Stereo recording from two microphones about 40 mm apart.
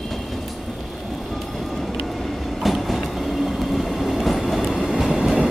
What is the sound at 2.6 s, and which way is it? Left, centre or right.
Train, centre.